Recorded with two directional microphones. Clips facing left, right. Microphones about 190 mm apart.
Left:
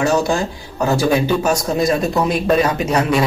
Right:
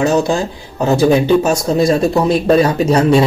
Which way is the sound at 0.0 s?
20° right (ahead or behind).